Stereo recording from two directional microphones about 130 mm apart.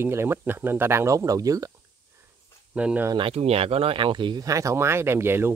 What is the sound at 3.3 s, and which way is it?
Speech, 50° right (ahead or behind).